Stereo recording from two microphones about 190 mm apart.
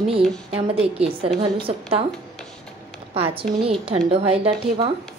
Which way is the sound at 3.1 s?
30° right (ahead or behind).